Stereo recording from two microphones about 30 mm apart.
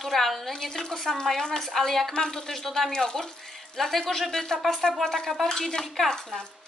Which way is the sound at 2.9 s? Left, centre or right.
Left.